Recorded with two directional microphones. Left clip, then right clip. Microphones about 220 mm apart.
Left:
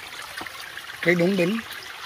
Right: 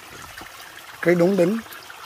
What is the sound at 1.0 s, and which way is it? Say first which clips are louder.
Speech: right 3 dB; 20° right (ahead or behind).